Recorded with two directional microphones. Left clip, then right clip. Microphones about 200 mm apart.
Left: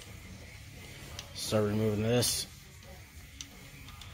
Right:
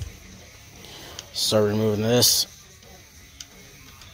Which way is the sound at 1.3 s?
35° right (ahead or behind).